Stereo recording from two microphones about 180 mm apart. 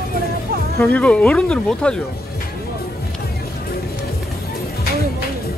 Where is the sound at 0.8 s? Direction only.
10° left (ahead or behind).